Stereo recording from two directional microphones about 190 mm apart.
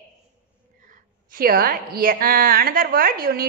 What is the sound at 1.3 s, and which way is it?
A woman's voice, 50° right (ahead or behind).